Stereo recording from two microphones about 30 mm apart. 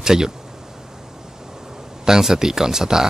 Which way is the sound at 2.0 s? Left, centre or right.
Centre.